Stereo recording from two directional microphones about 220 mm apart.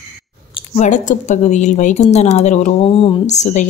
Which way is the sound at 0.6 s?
35° left (ahead or behind).